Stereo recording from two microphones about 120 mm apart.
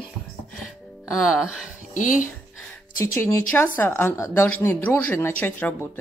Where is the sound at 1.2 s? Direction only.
Centre (ahead or behind).